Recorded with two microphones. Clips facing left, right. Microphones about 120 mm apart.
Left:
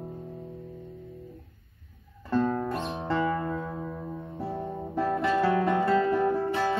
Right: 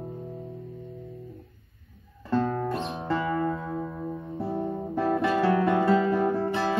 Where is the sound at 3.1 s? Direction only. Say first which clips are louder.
Right 1 dB; centre (ahead or behind).